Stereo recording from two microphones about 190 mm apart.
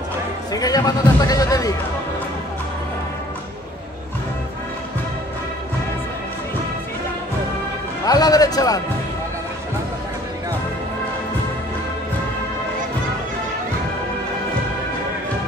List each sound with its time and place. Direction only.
0.5 s a man's voice: 20° left (ahead or behind)
8.0 s speech: 20° left (ahead or behind)